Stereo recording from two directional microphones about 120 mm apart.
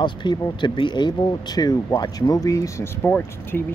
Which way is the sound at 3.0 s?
15° left (ahead or behind).